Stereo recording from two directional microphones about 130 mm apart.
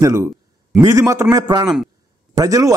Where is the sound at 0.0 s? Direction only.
20° right (ahead or behind).